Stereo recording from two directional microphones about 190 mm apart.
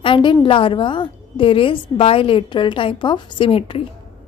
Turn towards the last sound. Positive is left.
turn(degrees=30)  # may be behind; listen again after turning